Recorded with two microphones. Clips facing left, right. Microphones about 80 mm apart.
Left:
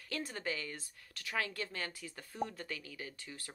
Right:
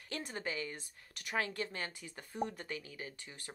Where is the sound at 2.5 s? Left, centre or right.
Centre.